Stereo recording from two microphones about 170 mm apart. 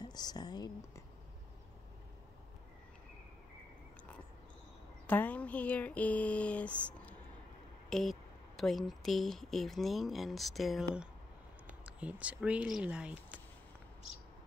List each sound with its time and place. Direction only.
0.0 s speech: 25° left (ahead or behind)
5.0 s a sound: 10° left (ahead or behind)
7.9 s speech: centre (ahead or behind)